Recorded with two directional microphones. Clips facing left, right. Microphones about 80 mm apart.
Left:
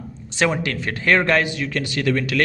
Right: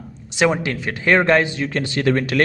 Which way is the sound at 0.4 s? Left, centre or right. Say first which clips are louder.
Right 2 dB; centre.